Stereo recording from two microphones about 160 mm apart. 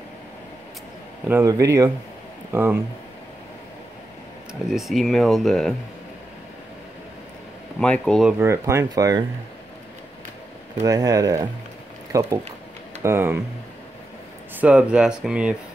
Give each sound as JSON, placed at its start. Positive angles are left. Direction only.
{"t": 1.3, "sound": "speech", "side_deg": -20}
{"t": 4.6, "sound": "speech", "side_deg": 0}
{"t": 7.8, "sound": "speech", "side_deg": 5}
{"t": 8.3, "sound": "speech", "side_deg": -15}
{"t": 10.8, "sound": "speech", "side_deg": -20}
{"t": 14.6, "sound": "speech", "side_deg": -5}